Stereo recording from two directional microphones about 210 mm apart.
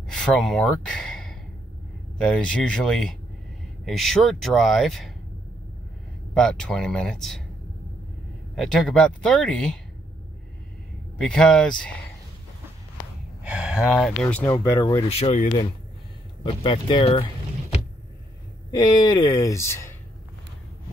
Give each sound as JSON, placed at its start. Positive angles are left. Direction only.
{"t": 0.1, "sound": "speech", "side_deg": 0}
{"t": 6.3, "sound": "speech", "side_deg": 0}
{"t": 8.5, "sound": "speech", "side_deg": 0}
{"t": 11.1, "sound": "speech", "side_deg": 5}
{"t": 13.4, "sound": "speech", "side_deg": -5}
{"t": 15.0, "sound": "speech", "side_deg": 30}
{"t": 18.7, "sound": "speech", "side_deg": 20}